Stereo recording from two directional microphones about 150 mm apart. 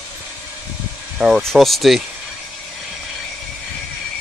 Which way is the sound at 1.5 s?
Centre (ahead or behind).